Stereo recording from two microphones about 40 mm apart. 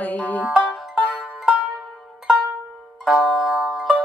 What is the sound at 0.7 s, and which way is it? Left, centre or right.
Music, centre.